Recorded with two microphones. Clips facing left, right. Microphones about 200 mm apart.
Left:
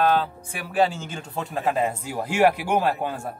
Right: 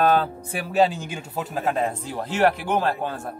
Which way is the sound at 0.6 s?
20° right (ahead or behind).